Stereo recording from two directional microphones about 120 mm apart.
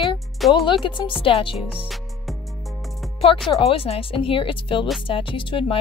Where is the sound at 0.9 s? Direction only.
45° left (ahead or behind).